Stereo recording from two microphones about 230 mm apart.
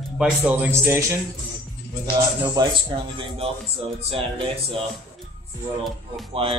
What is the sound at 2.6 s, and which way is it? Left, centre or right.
Speech, centre.